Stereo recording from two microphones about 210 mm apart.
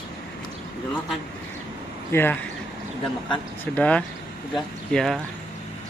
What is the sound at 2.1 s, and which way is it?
Speech, 10° left (ahead or behind).